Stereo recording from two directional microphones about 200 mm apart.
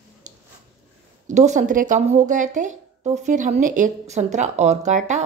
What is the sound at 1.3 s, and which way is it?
Speech, 35° right (ahead or behind).